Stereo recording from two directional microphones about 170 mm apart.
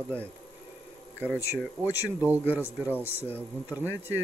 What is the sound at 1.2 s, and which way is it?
Speech, 15° left (ahead or behind).